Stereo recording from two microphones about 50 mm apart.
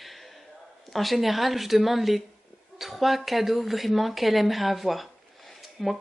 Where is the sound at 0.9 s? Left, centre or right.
Centre.